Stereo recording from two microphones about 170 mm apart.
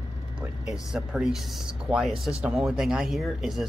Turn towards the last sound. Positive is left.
turn(degrees=0)  # may be behind; listen again after turning